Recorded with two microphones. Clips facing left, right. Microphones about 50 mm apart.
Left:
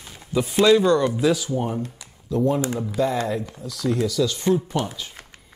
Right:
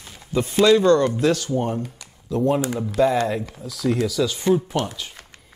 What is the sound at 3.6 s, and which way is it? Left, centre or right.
Speech, centre.